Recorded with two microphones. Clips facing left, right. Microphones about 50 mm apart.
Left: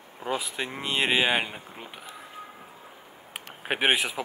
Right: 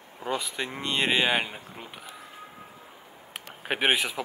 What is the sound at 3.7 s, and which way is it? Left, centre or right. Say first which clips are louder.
Speech: left 1 dB; centre.